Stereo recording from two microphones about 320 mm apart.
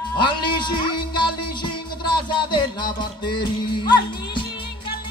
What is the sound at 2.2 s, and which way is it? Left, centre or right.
Music, centre.